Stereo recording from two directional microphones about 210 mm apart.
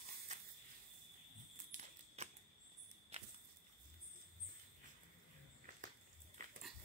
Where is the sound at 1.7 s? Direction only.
30° right (ahead or behind).